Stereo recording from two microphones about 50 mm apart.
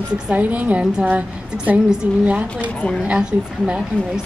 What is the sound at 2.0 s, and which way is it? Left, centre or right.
Speech, right.